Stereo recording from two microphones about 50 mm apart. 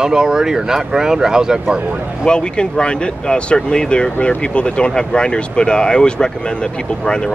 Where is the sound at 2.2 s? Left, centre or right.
Centre.